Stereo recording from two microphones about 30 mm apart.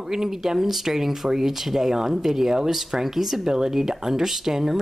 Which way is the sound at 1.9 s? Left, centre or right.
Centre.